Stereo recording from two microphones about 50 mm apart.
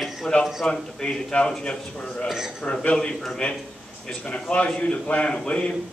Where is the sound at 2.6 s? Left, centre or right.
Left.